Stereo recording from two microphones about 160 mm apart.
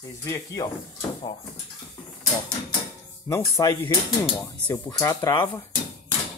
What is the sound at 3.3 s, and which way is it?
Speech, 15° left (ahead or behind).